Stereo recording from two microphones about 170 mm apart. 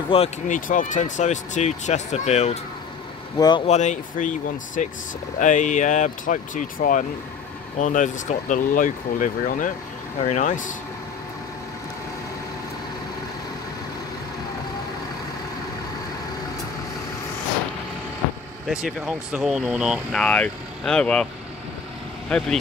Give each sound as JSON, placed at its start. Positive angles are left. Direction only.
{"t": 0.1, "sound": "speech", "side_deg": 35}
{"t": 0.5, "sound": "speech", "side_deg": 50}
{"t": 3.3, "sound": "speech", "side_deg": 25}
{"t": 3.6, "sound": "speech", "side_deg": 45}
{"t": 18.7, "sound": "speech", "side_deg": -5}
{"t": 22.3, "sound": "speech", "side_deg": 5}